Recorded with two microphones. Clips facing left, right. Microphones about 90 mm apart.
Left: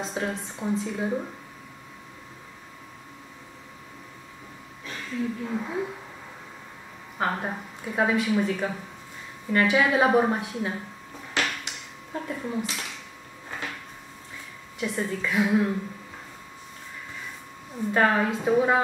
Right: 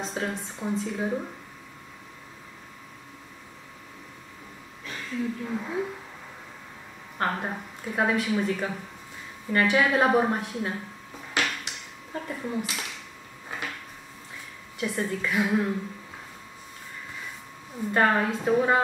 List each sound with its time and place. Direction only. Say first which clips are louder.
0.0 s speech: left 1 dB; centre (ahead or behind)
4.8 s a woman's voice: left 1 dB; centre (ahead or behind)
7.2 s speech: left 1 dB; 5° left (ahead or behind)
11.3 s a sound: even; centre (ahead or behind)
14.8 s speech: even; centre (ahead or behind)
17.9 s speech: even; centre (ahead or behind)